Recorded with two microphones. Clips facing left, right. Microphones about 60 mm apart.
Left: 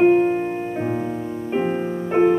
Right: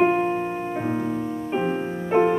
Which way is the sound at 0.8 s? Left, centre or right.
Centre.